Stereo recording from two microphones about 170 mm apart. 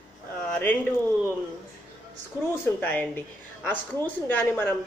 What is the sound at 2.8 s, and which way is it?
A woman's voice, 10° left (ahead or behind).